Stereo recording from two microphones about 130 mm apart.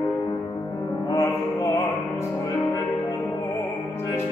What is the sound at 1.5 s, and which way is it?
Music, 25° left (ahead or behind).